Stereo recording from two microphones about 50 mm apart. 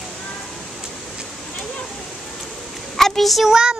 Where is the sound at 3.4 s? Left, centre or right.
Centre.